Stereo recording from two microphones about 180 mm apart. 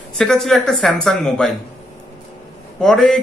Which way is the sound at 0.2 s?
Centre (ahead or behind).